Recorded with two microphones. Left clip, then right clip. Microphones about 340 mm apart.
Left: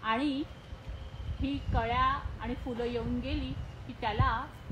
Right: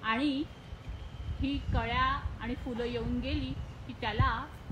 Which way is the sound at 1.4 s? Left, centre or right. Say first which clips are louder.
Left 1 dB; centre.